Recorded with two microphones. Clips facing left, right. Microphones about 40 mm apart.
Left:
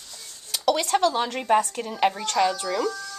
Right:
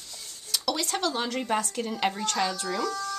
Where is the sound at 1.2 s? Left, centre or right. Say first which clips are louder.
Left 6 dB; left.